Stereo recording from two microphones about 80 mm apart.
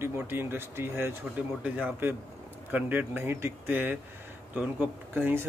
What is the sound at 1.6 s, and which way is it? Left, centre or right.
A man's voice, centre.